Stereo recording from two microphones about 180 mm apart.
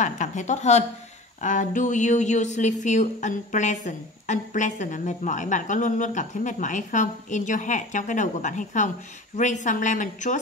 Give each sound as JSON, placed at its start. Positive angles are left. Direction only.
{"t": 0.0, "sound": "a woman's voice", "side_deg": 45}